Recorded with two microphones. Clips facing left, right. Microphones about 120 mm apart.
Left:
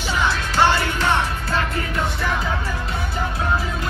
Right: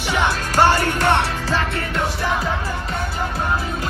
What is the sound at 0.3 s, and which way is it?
Music, 40° right (ahead or behind).